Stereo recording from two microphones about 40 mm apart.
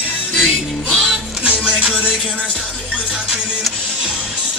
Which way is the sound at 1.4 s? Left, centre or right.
Right.